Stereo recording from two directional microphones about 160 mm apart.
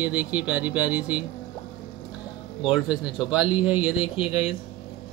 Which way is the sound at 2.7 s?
5° right (ahead or behind).